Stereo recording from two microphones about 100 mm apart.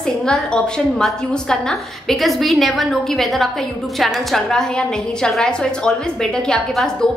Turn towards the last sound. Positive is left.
turn(degrees=5)  # may be behind; listen again after turning